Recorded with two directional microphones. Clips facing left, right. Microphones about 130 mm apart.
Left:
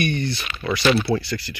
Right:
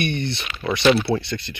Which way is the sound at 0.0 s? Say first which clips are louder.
Left 1 dB; 25° right (ahead or behind).